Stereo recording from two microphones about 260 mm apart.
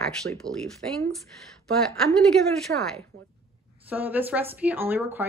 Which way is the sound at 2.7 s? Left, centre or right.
Right.